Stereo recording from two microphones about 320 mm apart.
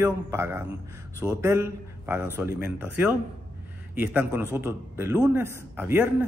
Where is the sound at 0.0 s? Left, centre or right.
Centre.